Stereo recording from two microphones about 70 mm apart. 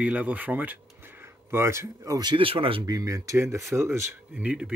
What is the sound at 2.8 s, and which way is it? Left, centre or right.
Speech, right.